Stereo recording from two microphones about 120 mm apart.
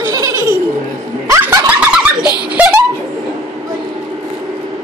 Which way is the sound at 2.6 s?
10° right (ahead or behind).